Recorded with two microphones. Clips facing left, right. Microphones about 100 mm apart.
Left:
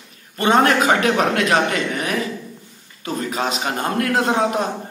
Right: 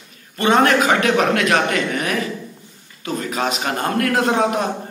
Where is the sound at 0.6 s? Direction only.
30° left (ahead or behind).